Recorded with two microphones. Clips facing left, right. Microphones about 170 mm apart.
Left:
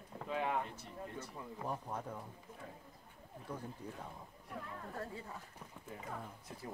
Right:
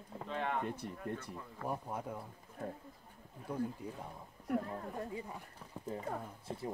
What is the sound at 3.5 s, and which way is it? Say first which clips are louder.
Speech: right 8 dB; 10° right (ahead or behind).